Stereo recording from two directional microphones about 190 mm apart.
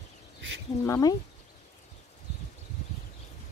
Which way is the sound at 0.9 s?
20° left (ahead or behind).